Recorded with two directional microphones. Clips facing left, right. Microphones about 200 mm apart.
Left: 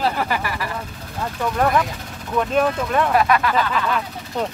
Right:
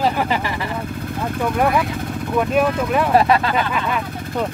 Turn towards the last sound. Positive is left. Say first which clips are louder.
# right 2 dB
turn(degrees=-25)  # may be behind; listen again after turning